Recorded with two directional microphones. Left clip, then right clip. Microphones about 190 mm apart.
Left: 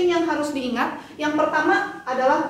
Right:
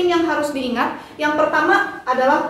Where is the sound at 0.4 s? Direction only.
Centre (ahead or behind).